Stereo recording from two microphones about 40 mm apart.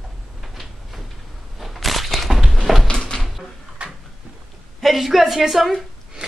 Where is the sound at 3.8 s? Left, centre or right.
Right.